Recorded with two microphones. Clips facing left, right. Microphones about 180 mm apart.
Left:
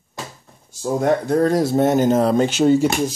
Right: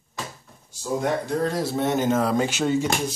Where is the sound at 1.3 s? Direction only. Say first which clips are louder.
Left 8 dB; 50° left (ahead or behind).